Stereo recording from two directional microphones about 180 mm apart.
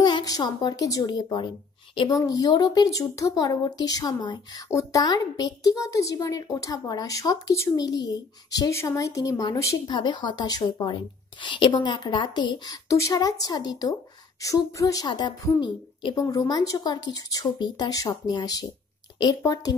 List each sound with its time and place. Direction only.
0.0 s speech: 20° left (ahead or behind)